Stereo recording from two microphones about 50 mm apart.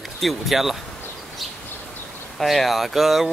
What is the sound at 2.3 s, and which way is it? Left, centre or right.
Speech, centre.